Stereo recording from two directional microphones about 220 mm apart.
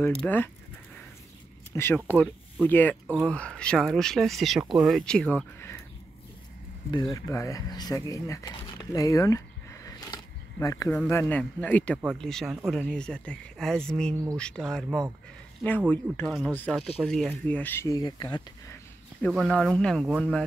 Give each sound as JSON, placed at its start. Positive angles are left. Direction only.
{"t": 0.2, "sound": "speech", "side_deg": 10}
{"t": 1.7, "sound": "speech", "side_deg": 10}
{"t": 6.9, "sound": "speech", "side_deg": 20}
{"t": 19.2, "sound": "speech", "side_deg": 5}